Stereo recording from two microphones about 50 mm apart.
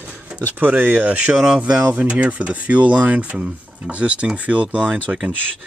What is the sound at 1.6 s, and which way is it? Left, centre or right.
Speech, right.